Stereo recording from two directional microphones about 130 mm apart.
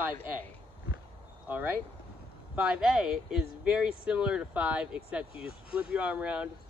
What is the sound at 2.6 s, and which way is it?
Speech, 10° right (ahead or behind).